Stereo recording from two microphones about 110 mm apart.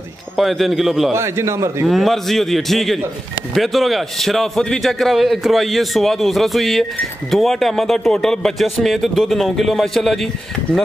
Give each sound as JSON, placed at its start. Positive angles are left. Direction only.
{"t": 0.4, "sound": "a man's voice", "side_deg": 0}
{"t": 1.1, "sound": "a man's voice", "side_deg": -25}
{"t": 1.9, "sound": "a man's voice", "side_deg": 0}